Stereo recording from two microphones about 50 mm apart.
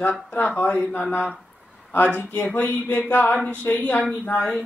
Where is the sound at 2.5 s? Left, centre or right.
Left.